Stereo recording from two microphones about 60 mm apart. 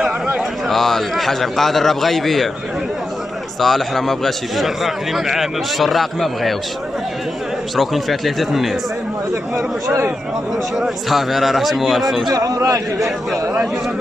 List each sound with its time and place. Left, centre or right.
0.7 s a man's voice: centre
3.6 s a man's voice: centre
7.7 s a man's voice: centre
10.8 s a man's voice: centre
12.3 s speech: right